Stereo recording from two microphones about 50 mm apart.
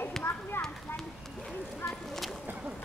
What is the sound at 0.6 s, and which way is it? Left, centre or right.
Clip-clop, left.